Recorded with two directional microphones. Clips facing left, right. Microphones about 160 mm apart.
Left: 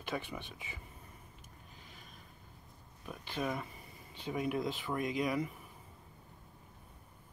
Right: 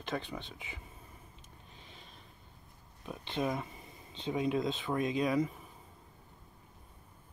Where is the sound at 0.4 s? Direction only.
20° right (ahead or behind).